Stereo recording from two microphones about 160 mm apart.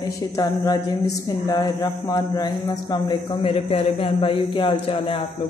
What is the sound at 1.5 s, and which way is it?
Mantra, 20° left (ahead or behind).